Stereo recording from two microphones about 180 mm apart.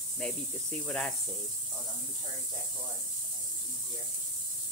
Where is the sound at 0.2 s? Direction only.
5° left (ahead or behind).